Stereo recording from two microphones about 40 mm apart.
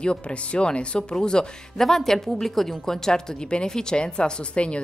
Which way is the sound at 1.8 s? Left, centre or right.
Centre.